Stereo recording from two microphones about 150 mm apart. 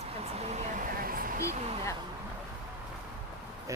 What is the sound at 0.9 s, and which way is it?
Speech, 75° right (ahead or behind).